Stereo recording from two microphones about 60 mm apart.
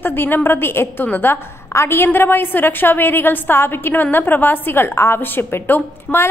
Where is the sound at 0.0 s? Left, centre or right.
Left.